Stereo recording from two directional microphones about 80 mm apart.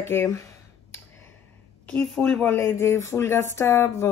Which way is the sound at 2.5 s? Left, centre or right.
Left.